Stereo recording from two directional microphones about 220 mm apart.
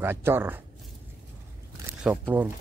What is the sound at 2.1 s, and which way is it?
Speech, 5° right (ahead or behind).